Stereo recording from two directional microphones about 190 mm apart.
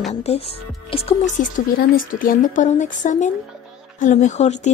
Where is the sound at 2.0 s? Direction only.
45° left (ahead or behind).